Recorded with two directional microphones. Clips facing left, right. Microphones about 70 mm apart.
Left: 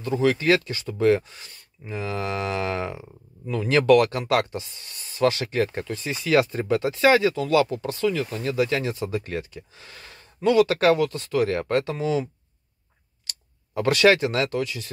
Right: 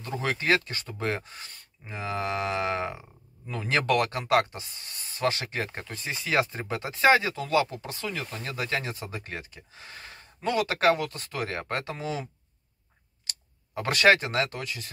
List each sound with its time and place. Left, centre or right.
0.2 s speech: right
1.9 s speech: right
8.5 s speech: right
13.9 s speech: right